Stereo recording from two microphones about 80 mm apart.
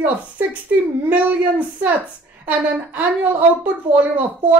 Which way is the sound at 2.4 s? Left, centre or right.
Right.